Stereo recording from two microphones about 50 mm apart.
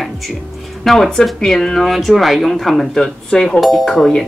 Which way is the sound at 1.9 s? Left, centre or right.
Centre.